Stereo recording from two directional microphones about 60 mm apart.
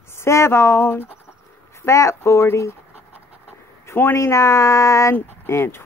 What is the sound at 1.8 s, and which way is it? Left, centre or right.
Speech, left.